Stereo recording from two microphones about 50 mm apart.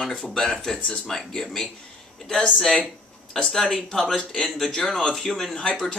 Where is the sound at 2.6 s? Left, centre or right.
Centre.